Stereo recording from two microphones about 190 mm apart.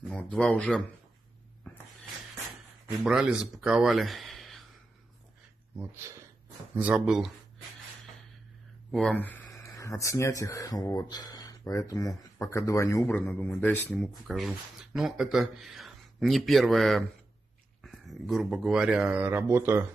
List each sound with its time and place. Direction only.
0.1 s speech: 5° left (ahead or behind)
1.6 s a sound: 10° left (ahead or behind)
3.0 s speech: 5° right (ahead or behind)
6.8 s speech: 5° right (ahead or behind)
8.9 s speech: 5° left (ahead or behind); by 19.8 s 15° right (ahead or behind)